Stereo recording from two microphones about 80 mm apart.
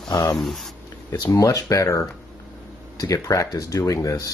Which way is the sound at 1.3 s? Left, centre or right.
Left.